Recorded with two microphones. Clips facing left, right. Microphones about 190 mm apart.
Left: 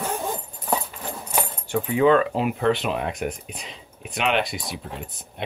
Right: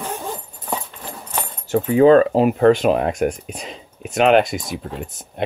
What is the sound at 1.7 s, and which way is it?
Speech, 40° right (ahead or behind).